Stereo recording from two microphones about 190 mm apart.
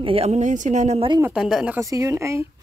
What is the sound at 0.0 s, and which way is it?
Speech, 30° right (ahead or behind).